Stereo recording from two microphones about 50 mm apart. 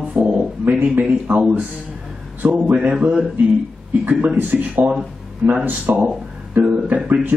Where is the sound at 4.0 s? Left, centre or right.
Right.